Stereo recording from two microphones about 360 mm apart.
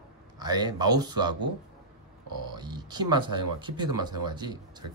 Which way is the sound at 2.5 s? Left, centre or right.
Centre.